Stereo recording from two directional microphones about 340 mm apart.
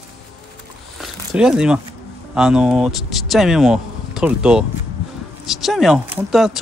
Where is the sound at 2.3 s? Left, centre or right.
Centre.